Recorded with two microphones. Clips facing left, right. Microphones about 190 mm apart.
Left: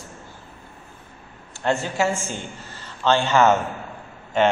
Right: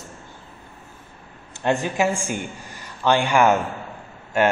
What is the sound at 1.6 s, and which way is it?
A man's voice, 15° right (ahead or behind).